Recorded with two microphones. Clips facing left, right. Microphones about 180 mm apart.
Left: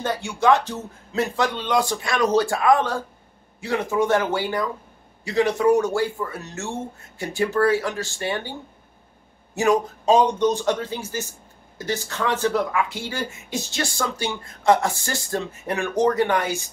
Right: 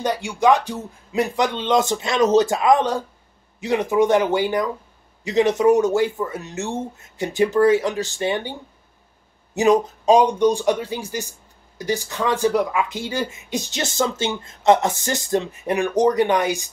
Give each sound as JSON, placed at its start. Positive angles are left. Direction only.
{"t": 0.0, "sound": "speech", "side_deg": -15}
{"t": 9.6, "sound": "speech", "side_deg": -20}